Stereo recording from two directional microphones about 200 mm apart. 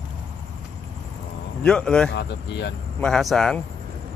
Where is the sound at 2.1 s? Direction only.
60° left (ahead or behind).